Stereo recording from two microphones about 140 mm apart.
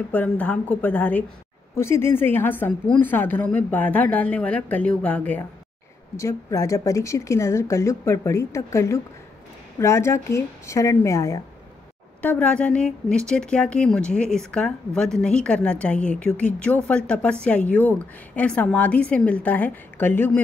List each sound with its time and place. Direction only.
0.1 s a woman's voice: 10° left (ahead or behind)
6.1 s a woman's voice: 25° left (ahead or behind)
12.2 s a woman's voice: 10° left (ahead or behind)